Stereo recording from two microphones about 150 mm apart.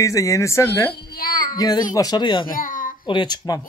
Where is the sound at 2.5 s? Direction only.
65° left (ahead or behind).